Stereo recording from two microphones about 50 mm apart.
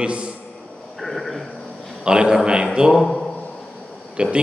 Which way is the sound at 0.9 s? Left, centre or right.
Centre.